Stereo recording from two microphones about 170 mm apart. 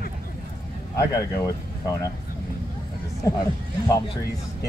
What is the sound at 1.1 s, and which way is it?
Speech, 20° left (ahead or behind).